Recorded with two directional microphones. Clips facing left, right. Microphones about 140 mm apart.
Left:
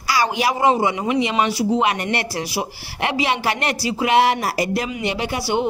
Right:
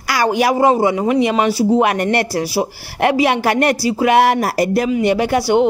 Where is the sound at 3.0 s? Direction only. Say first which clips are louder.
Right 6 dB; 50° right (ahead or behind).